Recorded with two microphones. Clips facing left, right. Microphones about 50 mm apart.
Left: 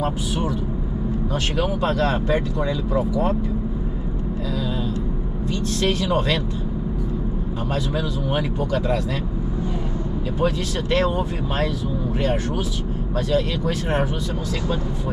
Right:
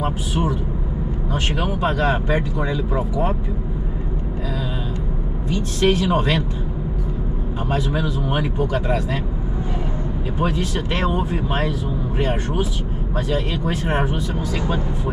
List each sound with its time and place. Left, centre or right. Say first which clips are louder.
0.0 s speech: right 1 dB; centre
5.5 s speech: right 4 dB; right
7.7 s speech: right 3 dB; centre
10.4 s speech: even; centre